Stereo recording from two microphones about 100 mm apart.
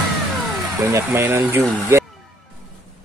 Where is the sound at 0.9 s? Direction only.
25° right (ahead or behind).